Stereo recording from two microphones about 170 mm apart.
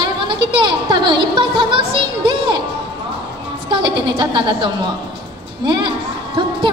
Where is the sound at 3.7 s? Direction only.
25° right (ahead or behind).